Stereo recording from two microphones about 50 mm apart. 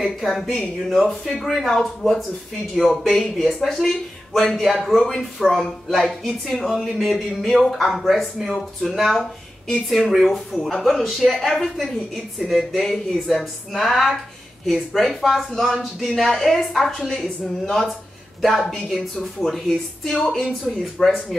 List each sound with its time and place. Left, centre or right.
0.0 s speech: centre